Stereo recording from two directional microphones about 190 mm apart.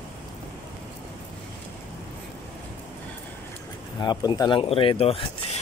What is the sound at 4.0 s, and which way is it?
Speech, 20° left (ahead or behind).